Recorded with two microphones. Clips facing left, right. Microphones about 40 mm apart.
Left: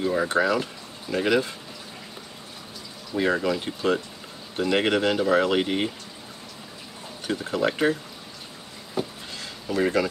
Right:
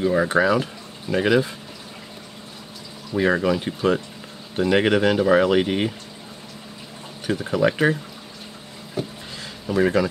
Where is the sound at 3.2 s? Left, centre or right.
Centre.